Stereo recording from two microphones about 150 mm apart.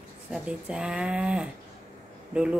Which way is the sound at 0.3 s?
5° right (ahead or behind).